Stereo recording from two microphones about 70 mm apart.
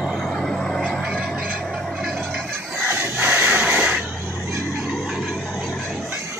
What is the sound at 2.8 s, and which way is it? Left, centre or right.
Crowd, right.